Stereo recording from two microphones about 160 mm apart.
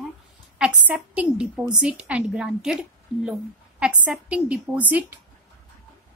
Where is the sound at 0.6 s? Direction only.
5° right (ahead or behind).